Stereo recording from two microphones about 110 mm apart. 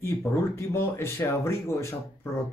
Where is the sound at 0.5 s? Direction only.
25° left (ahead or behind).